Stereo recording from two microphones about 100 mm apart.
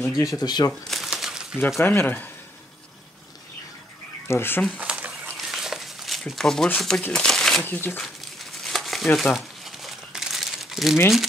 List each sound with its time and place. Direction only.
0.0 s speech: 35° left (ahead or behind)
0.8 s crumpling: centre (ahead or behind)
1.8 s speech: 25° left (ahead or behind)
4.3 s speech: 25° left (ahead or behind)
4.7 s dog: 15° right (ahead or behind)
5.4 s a sound: 5° right (ahead or behind)
6.8 s speech: 5° left (ahead or behind)
7.6 s speech: 20° left (ahead or behind)
8.6 s crumpling: centre (ahead or behind)